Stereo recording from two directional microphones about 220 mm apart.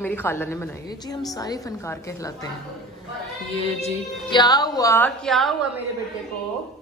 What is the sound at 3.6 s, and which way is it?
A woman's voice, 25° left (ahead or behind).